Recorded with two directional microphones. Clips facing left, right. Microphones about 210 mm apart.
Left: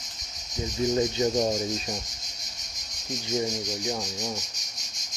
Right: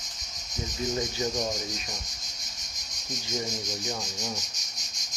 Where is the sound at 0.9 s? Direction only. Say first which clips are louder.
Left 7 dB; 30° left (ahead or behind).